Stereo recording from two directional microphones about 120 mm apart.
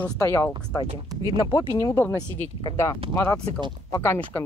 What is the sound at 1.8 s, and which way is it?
Speech, 25° left (ahead or behind).